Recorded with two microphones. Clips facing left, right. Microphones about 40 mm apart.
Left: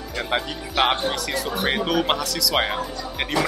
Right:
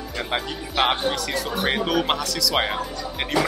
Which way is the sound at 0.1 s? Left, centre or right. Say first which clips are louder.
Left 2 dB; centre.